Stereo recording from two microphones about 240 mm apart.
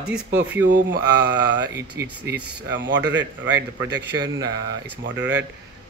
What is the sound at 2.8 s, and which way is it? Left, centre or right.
Speech, right.